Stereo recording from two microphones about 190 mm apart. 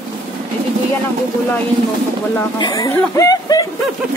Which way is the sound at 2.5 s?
20° left (ahead or behind).